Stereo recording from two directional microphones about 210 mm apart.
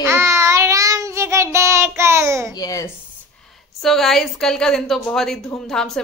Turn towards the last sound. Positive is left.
turn(degrees=0)  # may be behind; listen again after turning